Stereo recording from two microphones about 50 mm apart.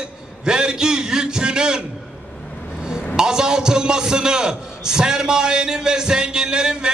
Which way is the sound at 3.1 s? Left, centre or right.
Centre.